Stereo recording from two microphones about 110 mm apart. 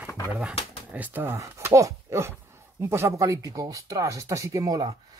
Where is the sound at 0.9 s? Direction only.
15° right (ahead or behind).